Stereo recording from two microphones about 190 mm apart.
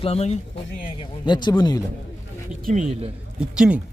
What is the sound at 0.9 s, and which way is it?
Speech, 25° left (ahead or behind).